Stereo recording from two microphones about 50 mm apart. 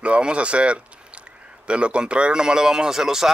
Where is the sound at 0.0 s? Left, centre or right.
Right.